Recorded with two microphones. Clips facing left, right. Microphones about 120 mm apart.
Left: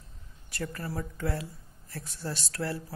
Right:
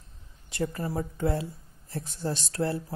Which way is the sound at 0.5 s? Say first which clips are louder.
Right 5 dB; 20° right (ahead or behind).